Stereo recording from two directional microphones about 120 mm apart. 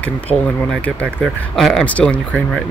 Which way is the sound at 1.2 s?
Centre (ahead or behind).